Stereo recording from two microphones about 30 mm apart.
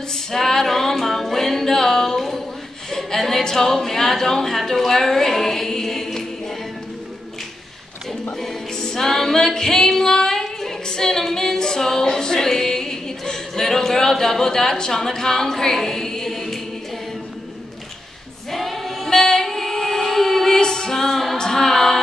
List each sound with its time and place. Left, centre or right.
0.1 s music: centre
2.1 s a sound: centre
2.9 s a sound: centre
3.2 s a capella: centre
3.4 s a woman's voice: centre
8.7 s music: centre
9.4 s female singing: centre
14.9 s a capella: centre
18.5 s singing: centre
19.0 s female singing: centre
20.6 s music: left
21.5 s a capella: centre